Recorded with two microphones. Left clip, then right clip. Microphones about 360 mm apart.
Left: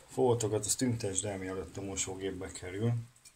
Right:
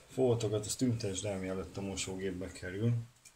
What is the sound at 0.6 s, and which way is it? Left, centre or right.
Speech, centre.